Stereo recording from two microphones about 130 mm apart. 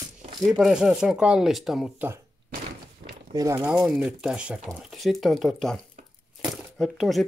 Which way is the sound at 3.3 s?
25° right (ahead or behind).